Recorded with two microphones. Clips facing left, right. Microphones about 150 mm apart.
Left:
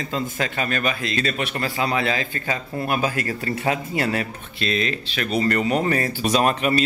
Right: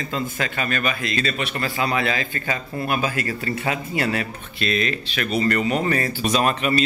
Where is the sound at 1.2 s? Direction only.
45° left (ahead or behind).